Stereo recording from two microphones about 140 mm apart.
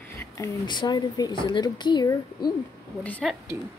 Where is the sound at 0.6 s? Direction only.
30° left (ahead or behind).